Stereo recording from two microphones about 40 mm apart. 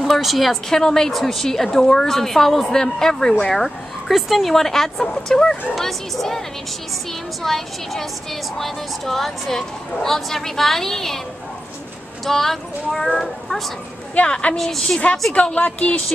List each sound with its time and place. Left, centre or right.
0.0 s a woman's voice: centre
0.7 s a woman's voice: centre
4.1 s a woman's voice: centre
7.4 s a woman's voice: centre
12.3 s a woman's voice: centre
14.2 s a woman's voice: left
14.6 s a woman's voice: centre
15.3 s speech: left